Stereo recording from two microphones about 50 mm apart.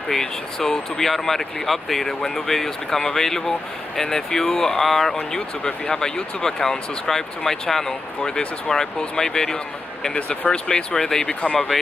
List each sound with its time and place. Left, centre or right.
0.1 s speech: centre